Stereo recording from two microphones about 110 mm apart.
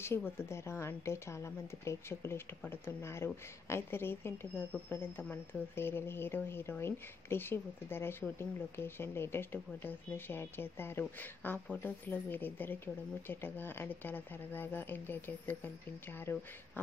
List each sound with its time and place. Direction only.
0.4 s speech: 25° left (ahead or behind)